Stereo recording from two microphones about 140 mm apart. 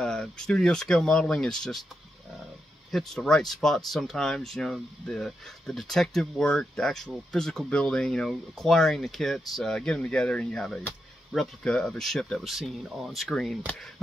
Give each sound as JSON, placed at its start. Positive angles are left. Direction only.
{"t": 0.0, "sound": "speech", "side_deg": 5}
{"t": 2.9, "sound": "speech", "side_deg": 0}